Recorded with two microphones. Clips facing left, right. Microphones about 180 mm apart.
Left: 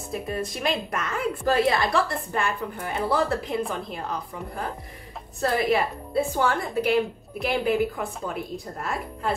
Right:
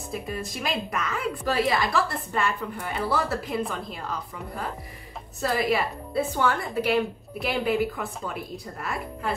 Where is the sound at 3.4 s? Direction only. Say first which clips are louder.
Left 1 dB; centre (ahead or behind).